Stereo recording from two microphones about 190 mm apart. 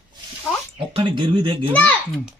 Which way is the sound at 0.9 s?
25° right (ahead or behind).